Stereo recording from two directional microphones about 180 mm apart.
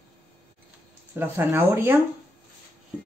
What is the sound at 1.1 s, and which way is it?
Speech, 10° right (ahead or behind).